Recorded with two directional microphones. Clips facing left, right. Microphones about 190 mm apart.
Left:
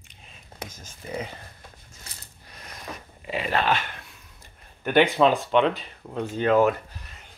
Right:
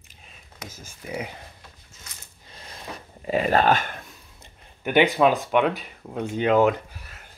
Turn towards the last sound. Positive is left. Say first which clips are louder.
# right 1 dB
turn(degrees=-15)  # may be behind; listen again after turning